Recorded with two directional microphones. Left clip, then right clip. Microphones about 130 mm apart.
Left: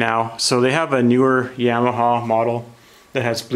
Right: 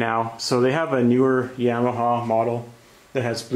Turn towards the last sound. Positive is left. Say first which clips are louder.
# left 4 dB
turn(degrees=40)  # may be behind; listen again after turning